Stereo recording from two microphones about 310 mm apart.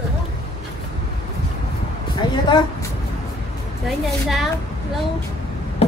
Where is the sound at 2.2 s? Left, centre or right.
Centre.